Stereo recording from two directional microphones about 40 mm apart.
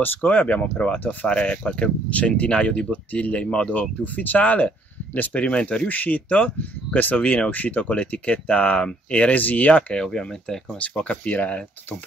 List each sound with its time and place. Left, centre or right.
0.2 s speech: left
2.9 s speech: left
4.0 s speech: left
9.9 s speech: centre
10.8 s speech: left